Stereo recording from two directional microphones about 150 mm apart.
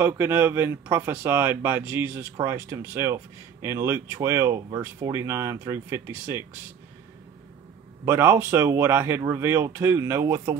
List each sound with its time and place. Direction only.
0.0 s speech: 15° right (ahead or behind)
8.0 s speech: 15° right (ahead or behind)